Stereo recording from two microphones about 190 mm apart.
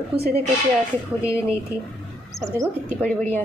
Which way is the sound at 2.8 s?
10° left (ahead or behind).